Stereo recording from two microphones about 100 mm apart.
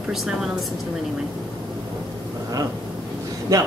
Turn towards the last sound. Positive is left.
turn(degrees=-30)  # may be behind; listen again after turning